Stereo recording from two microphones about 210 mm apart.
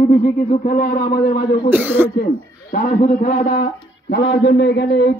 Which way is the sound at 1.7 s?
10° right (ahead or behind).